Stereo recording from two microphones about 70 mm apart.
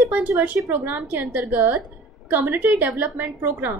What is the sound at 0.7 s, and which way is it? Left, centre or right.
A woman's voice, right.